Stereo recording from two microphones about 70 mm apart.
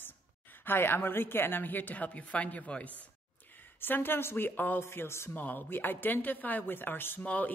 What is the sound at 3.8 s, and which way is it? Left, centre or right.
A woman's voice, left.